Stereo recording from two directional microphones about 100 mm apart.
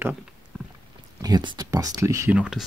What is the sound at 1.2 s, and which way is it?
Speech, 45° right (ahead or behind).